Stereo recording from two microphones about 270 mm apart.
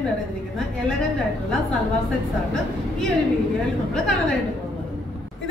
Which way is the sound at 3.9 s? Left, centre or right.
Centre.